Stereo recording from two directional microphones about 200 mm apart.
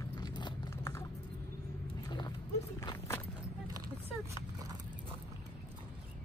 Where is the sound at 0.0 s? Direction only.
20° left (ahead or behind).